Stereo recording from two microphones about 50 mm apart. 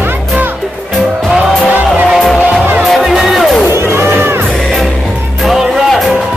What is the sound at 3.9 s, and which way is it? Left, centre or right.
Music, right.